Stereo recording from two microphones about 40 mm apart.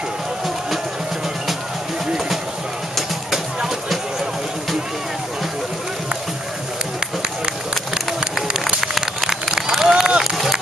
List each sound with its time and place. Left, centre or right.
3.3 s music: centre
8.5 s run: centre
9.0 s a sound: centre
10.2 s run: centre